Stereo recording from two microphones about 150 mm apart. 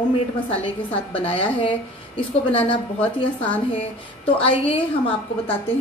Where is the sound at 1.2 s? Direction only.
35° left (ahead or behind).